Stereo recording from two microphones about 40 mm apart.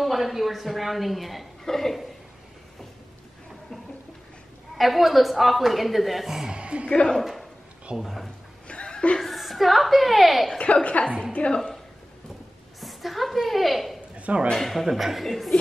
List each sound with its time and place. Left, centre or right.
0.0 s speech: centre
4.7 s speech: centre
6.5 s a woman's voice: right
8.0 s speech: centre
8.6 s chuckle: left
9.2 s a woman's voice: centre
10.6 s a woman's voice: left
12.8 s a sound: centre
14.1 s a sound: right
14.5 s speech: centre